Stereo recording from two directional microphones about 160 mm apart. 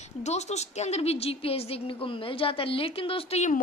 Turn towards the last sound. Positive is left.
turn(degrees=45)  # may be behind; listen again after turning